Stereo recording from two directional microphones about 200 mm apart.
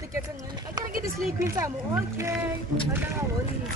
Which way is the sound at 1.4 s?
15° right (ahead or behind).